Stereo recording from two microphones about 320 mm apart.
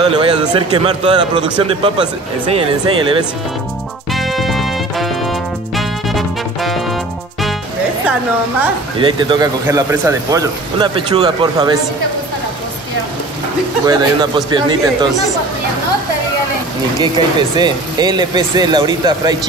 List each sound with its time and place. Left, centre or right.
0.0 s speech: centre
4.1 s music: centre
9.0 s speech: centre
13.8 s speech: centre
17.0 s speech: centre